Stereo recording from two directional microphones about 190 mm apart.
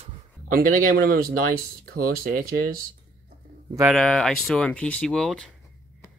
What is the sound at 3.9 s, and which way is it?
Speech, 5° left (ahead or behind).